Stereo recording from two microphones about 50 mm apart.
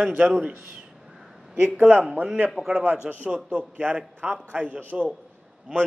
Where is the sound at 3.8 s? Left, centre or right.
Right.